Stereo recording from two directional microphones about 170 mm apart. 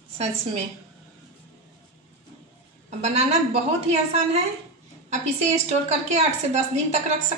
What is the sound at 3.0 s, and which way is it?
Speech, 40° right (ahead or behind).